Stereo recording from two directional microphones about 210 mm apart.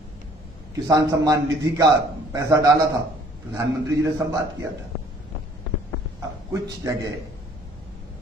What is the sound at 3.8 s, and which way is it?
Speech, 15° right (ahead or behind).